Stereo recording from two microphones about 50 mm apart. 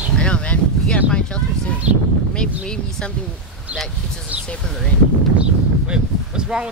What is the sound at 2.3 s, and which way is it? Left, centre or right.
Speech, centre.